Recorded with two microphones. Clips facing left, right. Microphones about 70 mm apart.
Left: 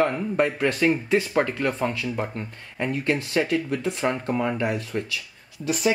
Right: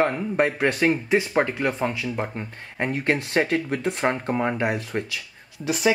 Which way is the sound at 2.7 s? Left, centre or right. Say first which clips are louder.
Right 1 dB; right.